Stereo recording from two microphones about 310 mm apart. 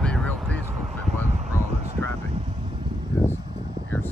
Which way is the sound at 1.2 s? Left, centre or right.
Right.